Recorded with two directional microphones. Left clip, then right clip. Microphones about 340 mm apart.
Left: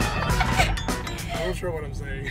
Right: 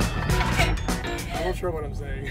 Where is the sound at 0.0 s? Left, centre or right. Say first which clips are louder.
Left 2 dB; centre.